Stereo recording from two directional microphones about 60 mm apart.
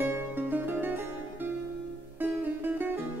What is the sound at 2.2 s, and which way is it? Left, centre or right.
Music, right.